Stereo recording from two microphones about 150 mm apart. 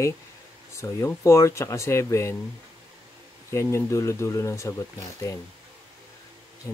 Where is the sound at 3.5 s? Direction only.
20° left (ahead or behind).